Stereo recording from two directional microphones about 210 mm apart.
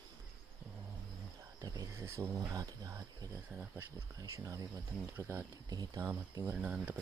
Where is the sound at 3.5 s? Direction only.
5° right (ahead or behind).